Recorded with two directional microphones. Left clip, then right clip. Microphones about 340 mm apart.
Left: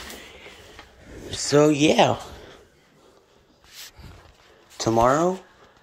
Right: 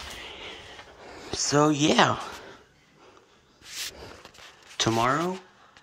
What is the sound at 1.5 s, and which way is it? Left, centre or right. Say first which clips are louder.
Speech: left 5 dB; centre.